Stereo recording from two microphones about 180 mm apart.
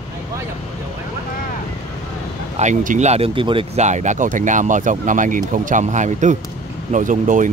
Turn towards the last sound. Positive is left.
turn(degrees=-45)  # may be behind; listen again after turning